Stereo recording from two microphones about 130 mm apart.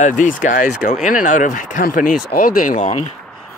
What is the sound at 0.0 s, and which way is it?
Speech, 80° left.